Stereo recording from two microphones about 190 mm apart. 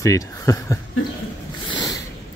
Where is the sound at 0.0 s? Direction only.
15° left (ahead or behind).